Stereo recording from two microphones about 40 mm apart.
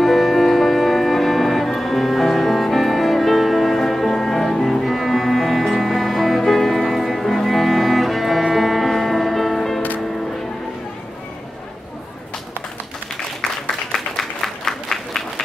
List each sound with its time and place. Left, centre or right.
0.0 s music: centre
13.9 s applause: centre